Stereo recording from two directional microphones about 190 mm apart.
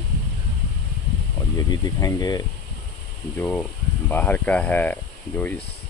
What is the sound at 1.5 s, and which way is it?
Speech, 20° left (ahead or behind).